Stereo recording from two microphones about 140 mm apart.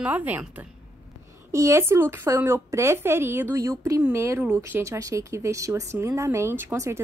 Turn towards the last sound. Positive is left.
turn(degrees=-20)  # may be behind; listen again after turning